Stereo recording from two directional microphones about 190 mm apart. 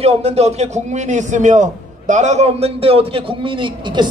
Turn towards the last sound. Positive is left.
turn(degrees=-25)  # may be behind; listen again after turning